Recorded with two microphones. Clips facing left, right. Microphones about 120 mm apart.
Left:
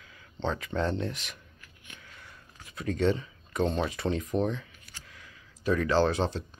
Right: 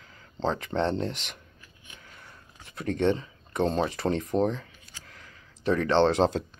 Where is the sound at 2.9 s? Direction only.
25° right (ahead or behind).